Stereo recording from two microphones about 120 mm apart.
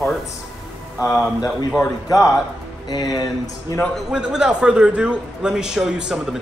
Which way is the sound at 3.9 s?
5° right (ahead or behind).